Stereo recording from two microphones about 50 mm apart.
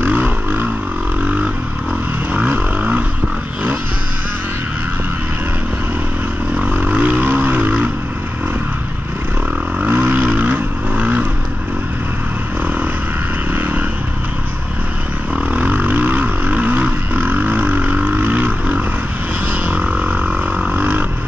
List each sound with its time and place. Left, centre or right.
0.0 s vehicle: right
2.3 s vehicle: right
6.7 s vehicle: right
9.8 s vehicle: right
13.6 s vehicle: right
15.5 s a sound: right
20.7 s vehicle: right